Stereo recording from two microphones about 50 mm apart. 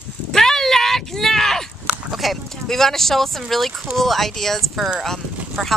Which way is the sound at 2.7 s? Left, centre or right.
Centre.